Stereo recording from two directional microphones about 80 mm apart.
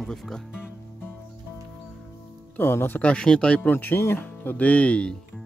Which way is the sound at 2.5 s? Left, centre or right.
Left.